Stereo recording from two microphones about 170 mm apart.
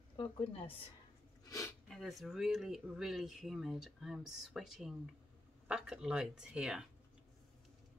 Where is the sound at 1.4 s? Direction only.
20° left (ahead or behind).